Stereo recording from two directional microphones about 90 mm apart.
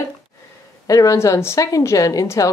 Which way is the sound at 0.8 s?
40° left (ahead or behind).